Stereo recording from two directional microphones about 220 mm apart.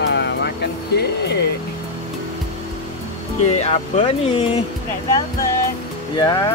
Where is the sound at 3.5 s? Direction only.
30° left (ahead or behind).